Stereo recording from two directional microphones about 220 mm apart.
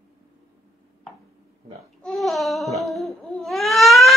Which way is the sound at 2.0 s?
Centre (ahead or behind).